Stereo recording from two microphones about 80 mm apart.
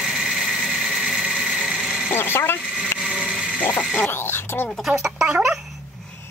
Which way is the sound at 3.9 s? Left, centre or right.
Left.